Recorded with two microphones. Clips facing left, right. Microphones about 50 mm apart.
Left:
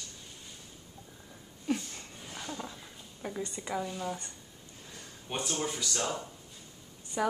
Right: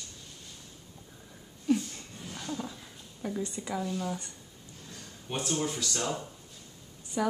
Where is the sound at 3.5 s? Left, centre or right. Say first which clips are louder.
Right 1 dB; centre.